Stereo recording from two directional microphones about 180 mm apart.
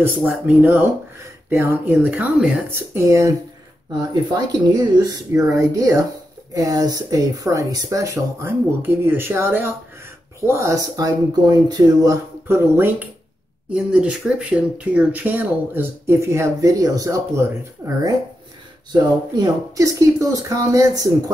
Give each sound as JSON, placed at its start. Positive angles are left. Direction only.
{"t": 0.0, "sound": "speech", "side_deg": -10}
{"t": 19.3, "sound": "speech", "side_deg": -20}